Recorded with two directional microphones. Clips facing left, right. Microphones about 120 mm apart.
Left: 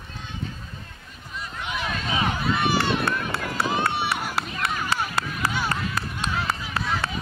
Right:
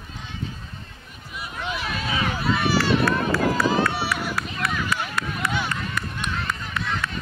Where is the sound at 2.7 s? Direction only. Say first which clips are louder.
Right 3 dB; 20° left (ahead or behind).